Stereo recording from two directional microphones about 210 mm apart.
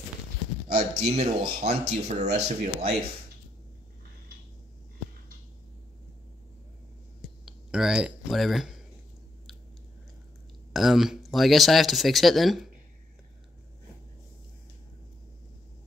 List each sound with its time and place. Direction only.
0.7 s speech: 30° right (ahead or behind)
7.2 s a sound: centre (ahead or behind)
10.7 s speech: centre (ahead or behind)